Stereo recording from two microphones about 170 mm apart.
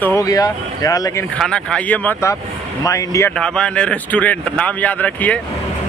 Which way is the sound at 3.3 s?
5° left (ahead or behind).